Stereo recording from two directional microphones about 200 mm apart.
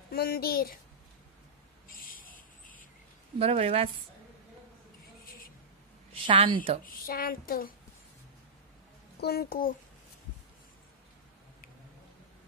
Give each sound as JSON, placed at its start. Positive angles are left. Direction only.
{"t": 0.1, "sound": "speech", "side_deg": 50}
{"t": 1.9, "sound": "a sound", "side_deg": 45}
{"t": 3.3, "sound": "a woman's voice", "side_deg": -30}
{"t": 6.2, "sound": "a woman's voice", "side_deg": -25}
{"t": 6.8, "sound": "speech", "side_deg": 45}
{"t": 9.2, "sound": "speech", "side_deg": 50}